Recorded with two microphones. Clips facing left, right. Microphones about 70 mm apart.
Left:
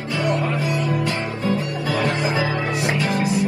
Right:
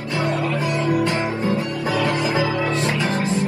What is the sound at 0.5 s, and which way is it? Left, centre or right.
Music, right.